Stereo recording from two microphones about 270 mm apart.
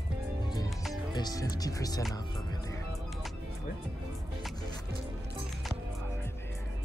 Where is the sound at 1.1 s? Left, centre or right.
Centre.